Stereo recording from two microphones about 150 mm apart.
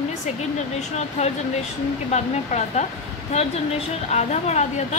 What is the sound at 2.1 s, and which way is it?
Speech, 50° left (ahead or behind).